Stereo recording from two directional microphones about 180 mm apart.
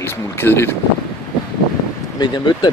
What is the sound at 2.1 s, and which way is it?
Speech, 25° left (ahead or behind).